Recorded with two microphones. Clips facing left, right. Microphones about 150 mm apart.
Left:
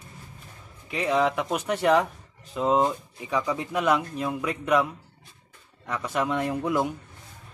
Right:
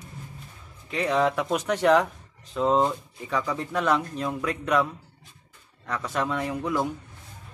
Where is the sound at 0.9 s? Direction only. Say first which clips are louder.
Even; 5° left (ahead or behind).